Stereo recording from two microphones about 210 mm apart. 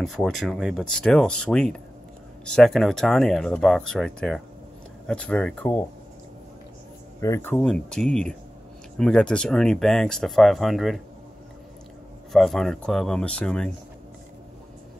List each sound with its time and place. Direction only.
0.0 s speech: centre (ahead or behind)
7.2 s speech: 10° left (ahead or behind)
12.3 s speech: centre (ahead or behind)